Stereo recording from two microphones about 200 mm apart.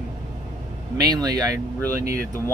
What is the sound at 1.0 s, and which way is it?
Speech, 20° right (ahead or behind).